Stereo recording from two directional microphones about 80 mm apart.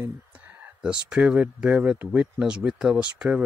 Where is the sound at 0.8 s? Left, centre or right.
Centre.